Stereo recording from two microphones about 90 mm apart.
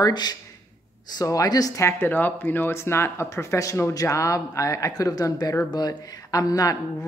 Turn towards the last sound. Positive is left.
turn(degrees=40)  # may be behind; listen again after turning